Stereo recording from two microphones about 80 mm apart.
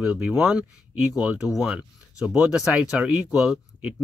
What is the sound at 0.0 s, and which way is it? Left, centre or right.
Speech, centre.